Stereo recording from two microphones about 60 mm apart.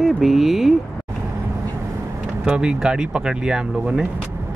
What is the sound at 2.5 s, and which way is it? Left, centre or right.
Speech, centre.